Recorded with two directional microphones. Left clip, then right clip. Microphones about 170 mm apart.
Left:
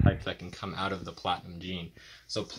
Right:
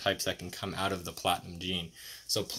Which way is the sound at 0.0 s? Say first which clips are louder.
Right 1 dB; 15° right (ahead or behind).